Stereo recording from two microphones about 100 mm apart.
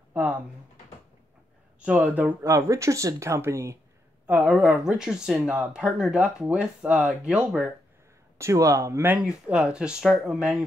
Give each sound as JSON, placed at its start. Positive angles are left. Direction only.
{"t": 0.1, "sound": "speech", "side_deg": -15}
{"t": 1.8, "sound": "speech", "side_deg": -15}
{"t": 2.4, "sound": "speech", "side_deg": -30}
{"t": 4.3, "sound": "speech", "side_deg": -5}
{"t": 8.4, "sound": "speech", "side_deg": -30}
{"t": 9.2, "sound": "speech", "side_deg": -5}